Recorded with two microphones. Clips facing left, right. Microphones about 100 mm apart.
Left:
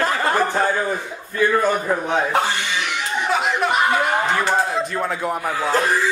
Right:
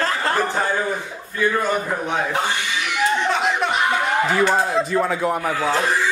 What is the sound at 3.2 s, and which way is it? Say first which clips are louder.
Chuckle: even; 5° left (ahead or behind).